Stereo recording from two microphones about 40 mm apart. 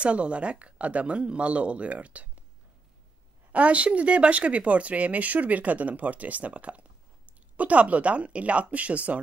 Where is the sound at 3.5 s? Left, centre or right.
Right.